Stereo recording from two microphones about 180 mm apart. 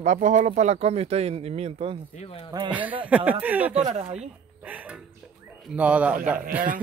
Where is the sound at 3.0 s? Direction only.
10° right (ahead or behind).